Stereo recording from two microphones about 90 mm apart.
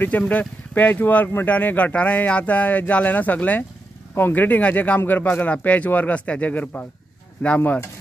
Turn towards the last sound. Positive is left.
turn(degrees=15)  # may be behind; listen again after turning